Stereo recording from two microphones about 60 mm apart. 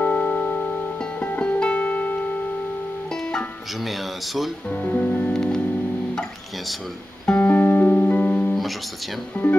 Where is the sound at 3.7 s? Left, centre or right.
Centre.